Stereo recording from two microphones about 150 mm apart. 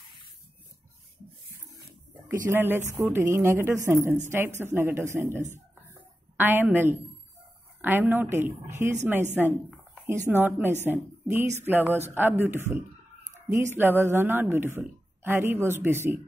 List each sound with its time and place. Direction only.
2.4 s a woman's voice: 15° right (ahead or behind)